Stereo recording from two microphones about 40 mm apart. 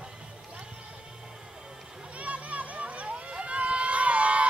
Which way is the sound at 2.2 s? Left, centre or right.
Right.